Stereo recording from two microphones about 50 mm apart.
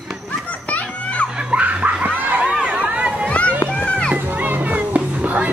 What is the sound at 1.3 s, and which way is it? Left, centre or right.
Screaming, right.